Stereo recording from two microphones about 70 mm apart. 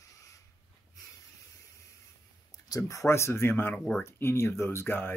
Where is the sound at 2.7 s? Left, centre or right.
Left.